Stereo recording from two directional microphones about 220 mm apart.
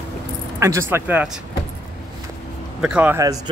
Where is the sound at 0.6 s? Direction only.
15° right (ahead or behind).